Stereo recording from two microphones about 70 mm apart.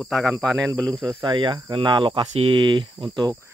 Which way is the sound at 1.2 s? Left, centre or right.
Right.